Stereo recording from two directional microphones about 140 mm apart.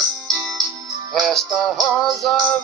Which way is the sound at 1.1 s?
Centre (ahead or behind).